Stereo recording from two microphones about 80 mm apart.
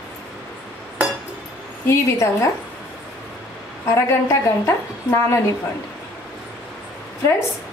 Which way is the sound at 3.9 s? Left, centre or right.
Left.